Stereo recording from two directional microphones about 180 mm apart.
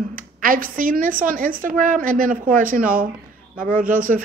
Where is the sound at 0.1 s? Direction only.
50° right (ahead or behind).